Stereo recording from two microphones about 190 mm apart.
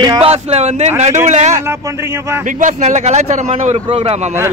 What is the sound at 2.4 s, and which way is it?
Speech, 40° right (ahead or behind).